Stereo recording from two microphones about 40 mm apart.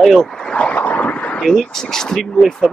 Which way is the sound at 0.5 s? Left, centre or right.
Left.